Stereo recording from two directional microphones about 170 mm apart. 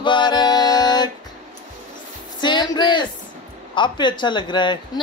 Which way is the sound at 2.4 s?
25° left (ahead or behind).